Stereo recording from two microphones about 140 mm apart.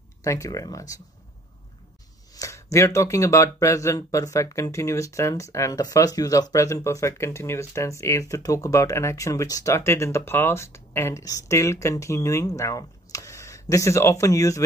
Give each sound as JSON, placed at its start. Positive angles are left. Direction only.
{"t": 0.2, "sound": "speech", "side_deg": 25}
{"t": 2.3, "sound": "speech", "side_deg": 20}